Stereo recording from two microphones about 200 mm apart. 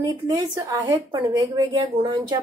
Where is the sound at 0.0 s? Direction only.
20° right (ahead or behind).